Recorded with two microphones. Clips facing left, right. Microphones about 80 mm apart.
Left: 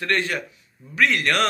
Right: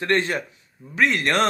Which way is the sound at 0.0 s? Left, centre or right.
Right.